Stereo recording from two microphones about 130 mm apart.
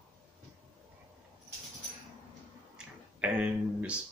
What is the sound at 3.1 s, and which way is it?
Speech, 10° right (ahead or behind).